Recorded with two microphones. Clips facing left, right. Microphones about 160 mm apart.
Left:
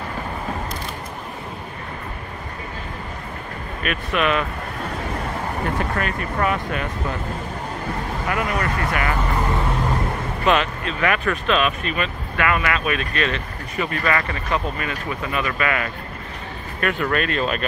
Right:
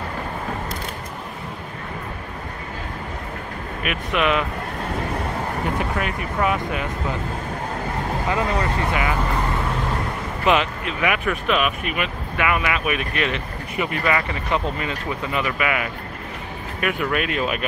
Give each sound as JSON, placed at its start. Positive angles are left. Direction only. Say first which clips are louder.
{"t": 3.8, "sound": "speech", "louder": "even", "side_deg": -15}
{"t": 5.8, "sound": "speech", "louder": "even", "side_deg": -15}
{"t": 8.3, "sound": "speech", "louder": "even", "side_deg": -25}
{"t": 10.4, "sound": "speech", "louder": "even", "side_deg": -15}